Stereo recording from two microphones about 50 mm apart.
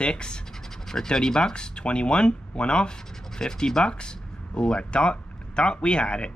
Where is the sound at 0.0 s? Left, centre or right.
Centre.